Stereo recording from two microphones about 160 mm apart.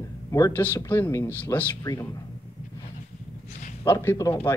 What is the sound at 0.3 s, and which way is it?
A man's voice, 15° left (ahead or behind).